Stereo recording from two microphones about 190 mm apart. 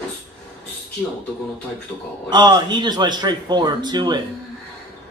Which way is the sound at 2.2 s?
25° right (ahead or behind).